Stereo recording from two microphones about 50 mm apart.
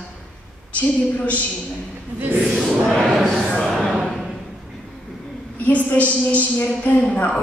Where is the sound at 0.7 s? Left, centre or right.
Left.